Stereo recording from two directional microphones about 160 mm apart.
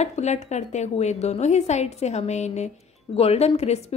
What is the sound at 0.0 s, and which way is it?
A woman's voice, 45° left (ahead or behind).